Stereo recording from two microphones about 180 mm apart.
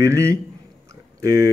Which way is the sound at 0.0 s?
15° right (ahead or behind).